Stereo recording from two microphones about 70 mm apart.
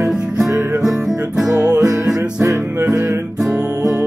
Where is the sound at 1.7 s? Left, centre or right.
Right.